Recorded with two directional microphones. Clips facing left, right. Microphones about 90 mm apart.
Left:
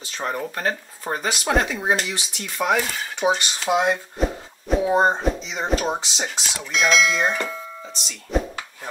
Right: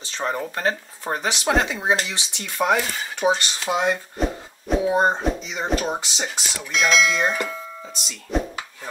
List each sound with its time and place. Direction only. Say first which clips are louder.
0.0 s speech: right 1 dB; 25° right (ahead or behind)
1.0 s speech: right 1 dB; centre (ahead or behind)
1.7 s speech: even; 20° right (ahead or behind)
2.4 s speech: right 1 dB; centre (ahead or behind)